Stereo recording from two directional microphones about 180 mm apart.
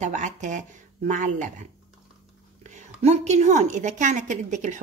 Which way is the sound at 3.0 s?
40° right (ahead or behind).